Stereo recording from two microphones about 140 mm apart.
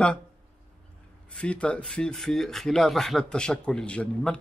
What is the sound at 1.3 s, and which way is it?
Speech, 10° left (ahead or behind).